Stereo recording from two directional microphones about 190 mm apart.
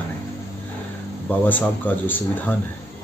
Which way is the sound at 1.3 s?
10° left (ahead or behind).